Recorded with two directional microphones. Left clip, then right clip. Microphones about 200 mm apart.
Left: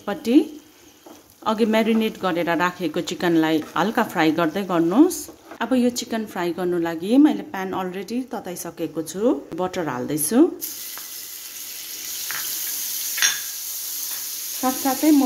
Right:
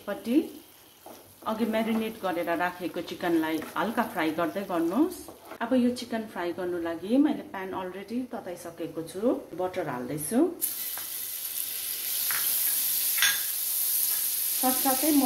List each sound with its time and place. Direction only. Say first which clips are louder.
0.0 s a woman's voice: left 9 dB; 60° left (ahead or behind)
1.4 s a woman's voice: left 9 dB; 60° left (ahead or behind)
14.6 s a woman's voice: left 4 dB; 65° left (ahead or behind)